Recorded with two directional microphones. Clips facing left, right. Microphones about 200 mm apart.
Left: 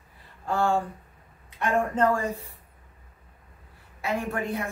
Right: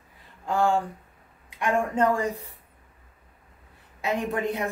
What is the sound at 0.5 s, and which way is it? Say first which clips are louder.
A man's voice: right 1 dB; 15° right (ahead or behind).